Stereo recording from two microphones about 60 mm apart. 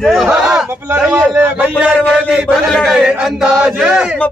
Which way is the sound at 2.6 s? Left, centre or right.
Centre.